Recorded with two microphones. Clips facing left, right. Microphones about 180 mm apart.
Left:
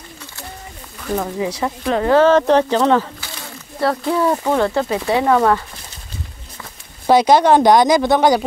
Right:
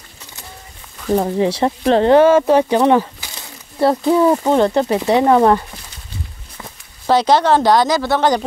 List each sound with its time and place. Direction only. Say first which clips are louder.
1.1 s speech: right 5 dB; 30° right (ahead or behind)
2.1 s speech: left 1 dB; 10° right (ahead or behind)
7.1 s speech: left 2 dB; 10° left (ahead or behind)